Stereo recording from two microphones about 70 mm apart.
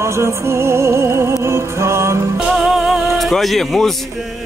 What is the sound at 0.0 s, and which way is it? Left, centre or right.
Music, right.